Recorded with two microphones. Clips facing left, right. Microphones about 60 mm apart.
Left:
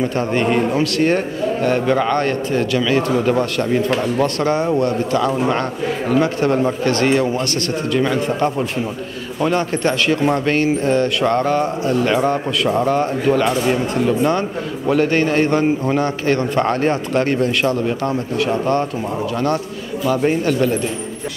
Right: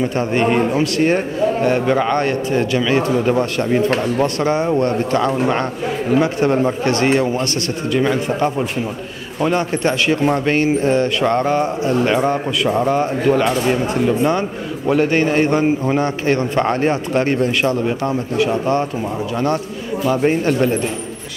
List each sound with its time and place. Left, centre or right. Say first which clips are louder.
0.1 s a man's voice: right 1 dB; right
1.9 s speech: even; centre
2.1 s a man's voice: right 1 dB; right
5.5 s a man's voice: even; right
7.9 s speech: right 1 dB; centre
8.3 s a man's voice: even; right